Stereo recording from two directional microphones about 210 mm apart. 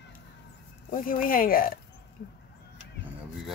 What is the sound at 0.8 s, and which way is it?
Speech, 40° left (ahead or behind).